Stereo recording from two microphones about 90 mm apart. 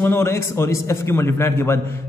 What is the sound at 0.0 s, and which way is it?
A man's voice, 25° left (ahead or behind).